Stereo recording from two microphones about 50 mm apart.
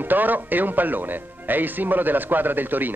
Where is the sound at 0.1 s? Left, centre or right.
Right.